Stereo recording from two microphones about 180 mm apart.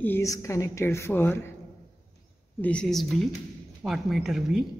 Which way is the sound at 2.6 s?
5° left (ahead or behind).